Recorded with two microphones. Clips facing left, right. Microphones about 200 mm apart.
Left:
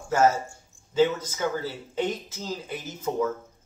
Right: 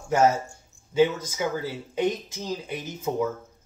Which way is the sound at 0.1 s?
15° right (ahead or behind).